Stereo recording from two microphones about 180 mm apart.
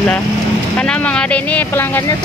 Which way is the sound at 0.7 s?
5° left (ahead or behind).